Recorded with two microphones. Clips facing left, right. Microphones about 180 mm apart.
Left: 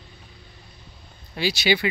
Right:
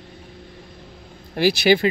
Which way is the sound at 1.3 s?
60° right (ahead or behind).